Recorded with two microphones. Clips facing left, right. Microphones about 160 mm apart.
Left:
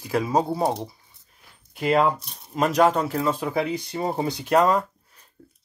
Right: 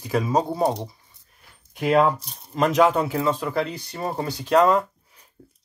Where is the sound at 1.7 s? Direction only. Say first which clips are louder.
Right 2 dB; centre (ahead or behind).